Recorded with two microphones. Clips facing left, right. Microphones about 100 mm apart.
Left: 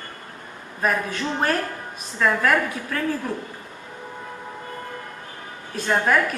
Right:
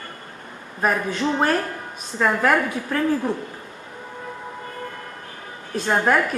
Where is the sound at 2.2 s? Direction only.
15° right (ahead or behind).